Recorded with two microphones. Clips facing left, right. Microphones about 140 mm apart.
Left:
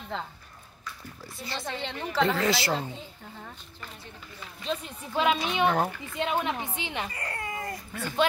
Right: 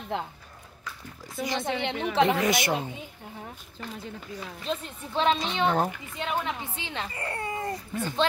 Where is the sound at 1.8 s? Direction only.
80° right.